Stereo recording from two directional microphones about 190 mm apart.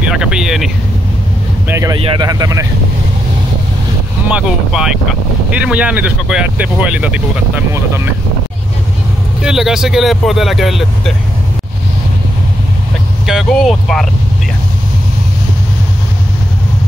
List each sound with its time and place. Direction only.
0.0 s speech: 5° right (ahead or behind)
1.7 s speech: 20° right (ahead or behind)
4.3 s speech: 5° right (ahead or behind)
9.4 s speech: 5° right (ahead or behind)
13.3 s speech: centre (ahead or behind)